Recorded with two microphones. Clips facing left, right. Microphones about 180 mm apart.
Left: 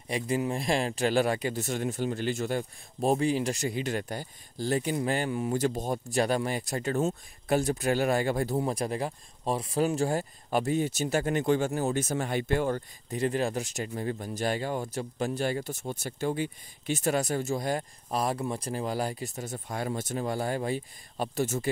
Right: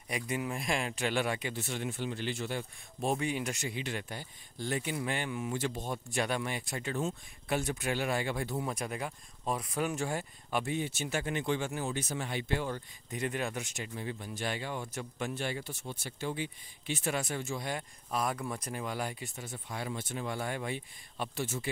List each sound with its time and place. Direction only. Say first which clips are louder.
0.1 s speech: left 6 dB; 30° left (ahead or behind); by 12.8 s 50° left (ahead or behind)
13.1 s speech: left 7 dB; 35° left (ahead or behind)